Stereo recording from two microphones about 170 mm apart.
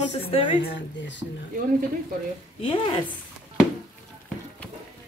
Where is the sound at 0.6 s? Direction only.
80° left.